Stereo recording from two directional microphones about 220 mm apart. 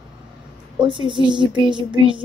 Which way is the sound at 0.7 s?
20° right (ahead or behind).